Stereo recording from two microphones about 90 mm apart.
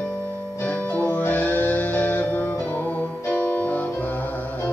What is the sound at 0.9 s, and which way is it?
Music, 20° left (ahead or behind).